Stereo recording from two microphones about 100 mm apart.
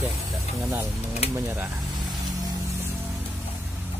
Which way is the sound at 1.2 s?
90° left.